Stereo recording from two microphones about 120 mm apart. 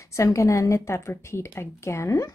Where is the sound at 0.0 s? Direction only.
25° left (ahead or behind).